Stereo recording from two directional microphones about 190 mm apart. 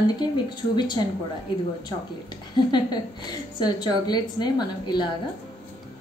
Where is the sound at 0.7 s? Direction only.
25° left (ahead or behind).